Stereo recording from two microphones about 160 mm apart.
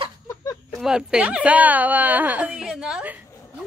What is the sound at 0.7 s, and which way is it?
Speech, 5° right (ahead or behind).